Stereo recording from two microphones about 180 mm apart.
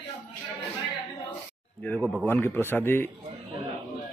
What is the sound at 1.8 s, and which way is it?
A man's voice, centre (ahead or behind).